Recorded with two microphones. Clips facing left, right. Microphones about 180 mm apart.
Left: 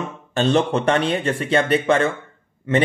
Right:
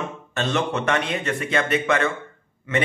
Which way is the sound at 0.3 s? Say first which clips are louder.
Left 6 dB; 30° left (ahead or behind).